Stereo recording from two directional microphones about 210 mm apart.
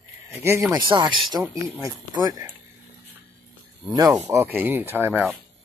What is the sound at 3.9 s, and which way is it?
Speech, 15° right (ahead or behind).